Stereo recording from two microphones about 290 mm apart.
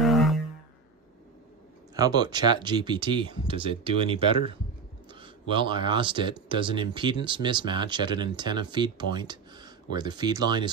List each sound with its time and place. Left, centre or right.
0.0 s music: centre
2.0 s speech: centre